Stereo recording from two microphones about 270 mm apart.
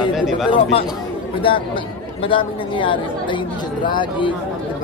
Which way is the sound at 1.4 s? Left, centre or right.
Centre.